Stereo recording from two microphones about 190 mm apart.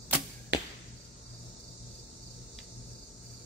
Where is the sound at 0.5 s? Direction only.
60° right (ahead or behind).